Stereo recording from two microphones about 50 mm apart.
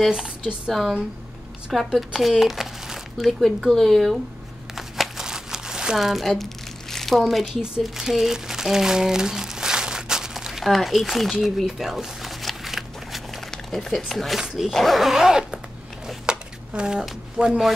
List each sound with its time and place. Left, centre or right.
0.7 s speech: centre
4.7 s crumpling: centre
7.8 s speech: centre
11.4 s a sound: centre
13.5 s speech: centre
16.3 s a sound: centre
17.5 s speech: centre